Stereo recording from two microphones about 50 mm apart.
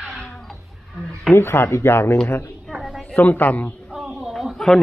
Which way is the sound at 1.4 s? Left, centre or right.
Left.